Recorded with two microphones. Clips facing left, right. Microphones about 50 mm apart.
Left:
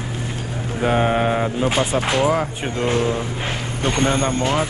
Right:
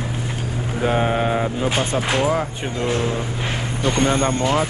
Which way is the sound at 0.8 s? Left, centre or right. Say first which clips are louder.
Left 2 dB; centre.